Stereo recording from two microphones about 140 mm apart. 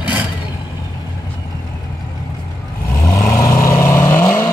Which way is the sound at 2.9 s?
25° left (ahead or behind).